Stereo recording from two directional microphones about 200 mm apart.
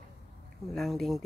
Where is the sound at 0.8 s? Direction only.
Centre (ahead or behind).